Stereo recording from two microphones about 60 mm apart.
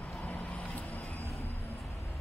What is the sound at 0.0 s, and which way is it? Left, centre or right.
Vehicle, left.